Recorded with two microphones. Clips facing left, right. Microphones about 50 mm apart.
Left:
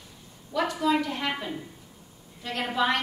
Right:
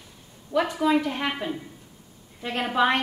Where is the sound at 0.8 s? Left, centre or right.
Centre.